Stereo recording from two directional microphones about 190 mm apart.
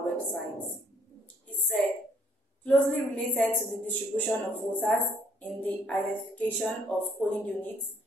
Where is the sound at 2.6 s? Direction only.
5° left (ahead or behind).